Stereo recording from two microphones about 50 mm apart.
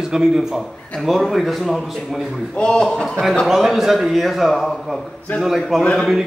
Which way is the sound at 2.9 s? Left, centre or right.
Centre.